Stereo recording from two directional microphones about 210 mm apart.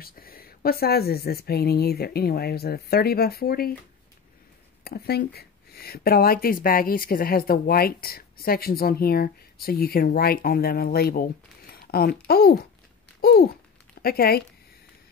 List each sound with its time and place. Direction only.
0.0 s speech: 45° left (ahead or behind)
4.8 s speech: 50° left (ahead or behind)
13.2 s babbling: 45° left (ahead or behind)
14.0 s speech: 45° left (ahead or behind)